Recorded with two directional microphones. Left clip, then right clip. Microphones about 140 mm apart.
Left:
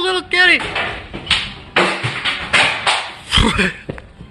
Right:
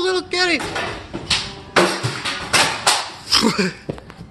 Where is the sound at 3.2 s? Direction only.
10° right (ahead or behind).